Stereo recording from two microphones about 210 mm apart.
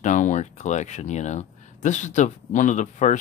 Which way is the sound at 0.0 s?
35° left (ahead or behind).